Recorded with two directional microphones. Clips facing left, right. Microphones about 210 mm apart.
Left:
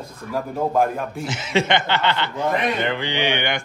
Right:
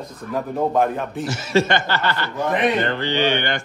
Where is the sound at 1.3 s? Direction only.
20° left (ahead or behind).